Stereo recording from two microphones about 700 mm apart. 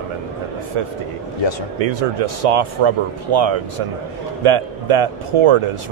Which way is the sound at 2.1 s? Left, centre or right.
Right.